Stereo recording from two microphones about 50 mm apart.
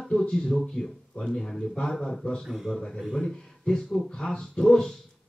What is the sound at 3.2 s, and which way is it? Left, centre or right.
Speech, centre.